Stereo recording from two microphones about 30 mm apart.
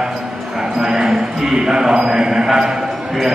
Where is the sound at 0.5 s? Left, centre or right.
Centre.